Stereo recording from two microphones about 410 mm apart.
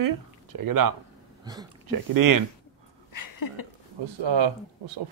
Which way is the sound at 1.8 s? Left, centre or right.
Right.